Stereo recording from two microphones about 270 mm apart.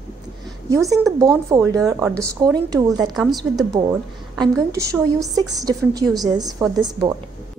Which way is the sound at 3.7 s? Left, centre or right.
Centre.